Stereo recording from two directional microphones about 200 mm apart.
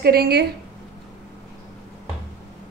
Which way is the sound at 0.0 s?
50° right (ahead or behind).